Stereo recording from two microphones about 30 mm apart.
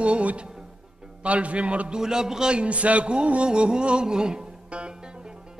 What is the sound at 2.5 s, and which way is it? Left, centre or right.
Speech, right.